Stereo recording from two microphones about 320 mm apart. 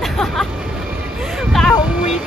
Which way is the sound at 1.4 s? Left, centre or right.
Centre.